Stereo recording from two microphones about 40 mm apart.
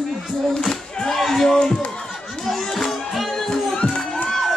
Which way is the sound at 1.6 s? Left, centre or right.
Left.